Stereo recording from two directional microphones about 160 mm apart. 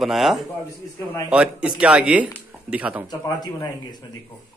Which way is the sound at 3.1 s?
25° left (ahead or behind).